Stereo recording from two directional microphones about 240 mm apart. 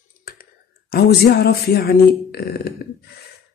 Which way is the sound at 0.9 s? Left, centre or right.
Left.